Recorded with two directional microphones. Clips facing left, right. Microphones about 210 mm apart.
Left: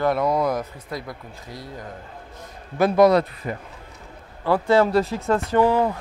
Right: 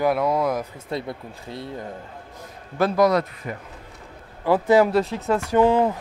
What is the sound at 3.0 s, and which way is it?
Speech, 30° left (ahead or behind).